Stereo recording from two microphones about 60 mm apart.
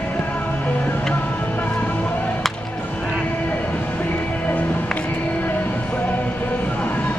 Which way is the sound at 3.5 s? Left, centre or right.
Left.